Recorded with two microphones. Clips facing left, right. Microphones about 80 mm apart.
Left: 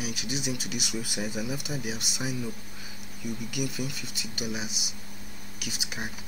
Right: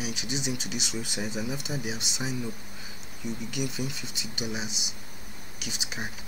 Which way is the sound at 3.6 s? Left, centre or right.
Centre.